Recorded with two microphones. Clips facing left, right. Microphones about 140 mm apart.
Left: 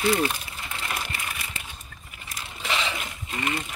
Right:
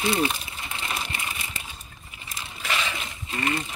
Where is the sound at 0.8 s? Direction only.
15° right (ahead or behind).